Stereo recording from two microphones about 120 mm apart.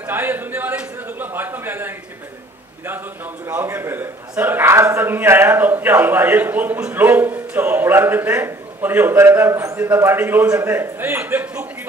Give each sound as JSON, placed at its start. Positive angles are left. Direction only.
{"t": 0.0, "sound": "a man's voice", "side_deg": -20}
{"t": 3.4, "sound": "a man's voice", "side_deg": -20}